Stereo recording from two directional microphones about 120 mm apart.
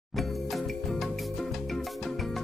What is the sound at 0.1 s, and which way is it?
Music, centre (ahead or behind).